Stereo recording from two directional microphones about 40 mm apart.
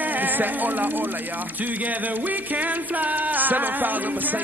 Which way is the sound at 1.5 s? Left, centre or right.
Right.